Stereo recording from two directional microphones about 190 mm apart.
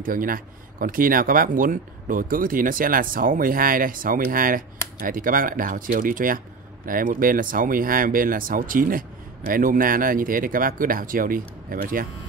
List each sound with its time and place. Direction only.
0.0 s speech: 45° right (ahead or behind)